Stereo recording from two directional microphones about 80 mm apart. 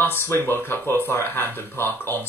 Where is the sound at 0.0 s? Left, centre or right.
Left.